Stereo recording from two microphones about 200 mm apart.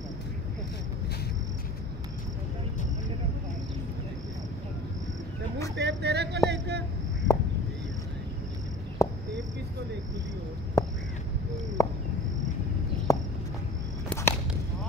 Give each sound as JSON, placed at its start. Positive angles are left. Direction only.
{"t": 5.8, "sound": "a sound", "side_deg": -55}
{"t": 9.0, "sound": "cricket", "side_deg": 15}
{"t": 10.8, "sound": "crow", "side_deg": 15}
{"t": 11.8, "sound": "cricket", "side_deg": 15}
{"t": 13.1, "sound": "walk", "side_deg": 15}
{"t": 14.0, "sound": "whip", "side_deg": 10}